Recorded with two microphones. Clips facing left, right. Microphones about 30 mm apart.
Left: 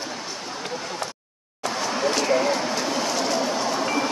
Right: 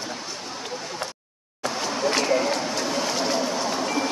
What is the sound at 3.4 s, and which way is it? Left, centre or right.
Train, centre.